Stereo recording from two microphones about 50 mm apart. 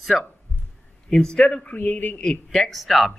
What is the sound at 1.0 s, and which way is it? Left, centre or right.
Speech, centre.